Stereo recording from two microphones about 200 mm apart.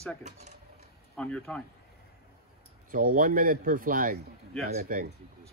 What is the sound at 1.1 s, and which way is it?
Speech, 5° left (ahead or behind).